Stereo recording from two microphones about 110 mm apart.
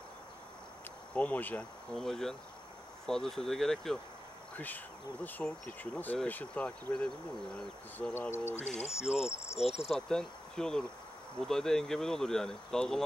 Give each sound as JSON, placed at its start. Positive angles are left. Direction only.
{"t": 1.1, "sound": "speech", "side_deg": 15}
{"t": 2.0, "sound": "speech", "side_deg": 5}
{"t": 4.6, "sound": "speech", "side_deg": 15}
{"t": 8.1, "sound": "speech", "side_deg": 20}
{"t": 8.5, "sound": "speech", "side_deg": 90}
{"t": 9.6, "sound": "speech", "side_deg": 70}
{"t": 9.8, "sound": "speech", "side_deg": 5}